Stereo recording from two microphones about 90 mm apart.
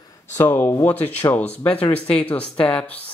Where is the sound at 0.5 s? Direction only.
20° left (ahead or behind).